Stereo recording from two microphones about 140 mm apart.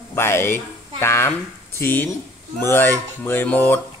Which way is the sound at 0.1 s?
15° left (ahead or behind).